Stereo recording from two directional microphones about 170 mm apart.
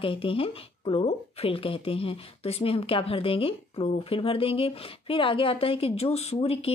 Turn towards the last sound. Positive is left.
turn(degrees=35)  # may be behind; listen again after turning